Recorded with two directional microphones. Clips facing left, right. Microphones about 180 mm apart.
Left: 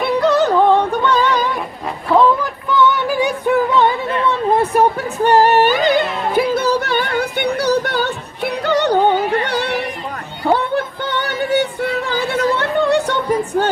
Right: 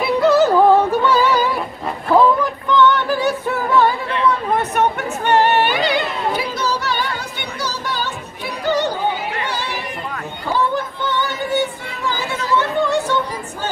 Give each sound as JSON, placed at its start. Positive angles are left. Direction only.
{"t": 0.0, "sound": "yodeling", "side_deg": -5}
{"t": 2.1, "sound": "music", "side_deg": 5}
{"t": 4.3, "sound": "music", "side_deg": 30}
{"t": 12.0, "sound": "a sound", "side_deg": 60}